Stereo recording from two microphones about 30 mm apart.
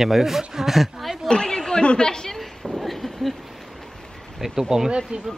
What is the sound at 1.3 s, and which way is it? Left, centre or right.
A woman's voice, left.